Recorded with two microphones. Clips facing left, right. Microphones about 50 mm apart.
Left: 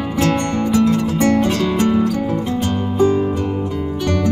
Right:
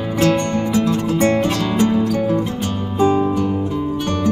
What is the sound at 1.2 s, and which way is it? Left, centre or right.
Music, right.